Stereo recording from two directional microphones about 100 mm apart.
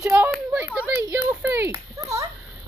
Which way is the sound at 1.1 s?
10° right (ahead or behind).